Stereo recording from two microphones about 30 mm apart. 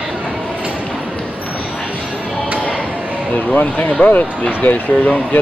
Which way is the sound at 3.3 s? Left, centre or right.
Left.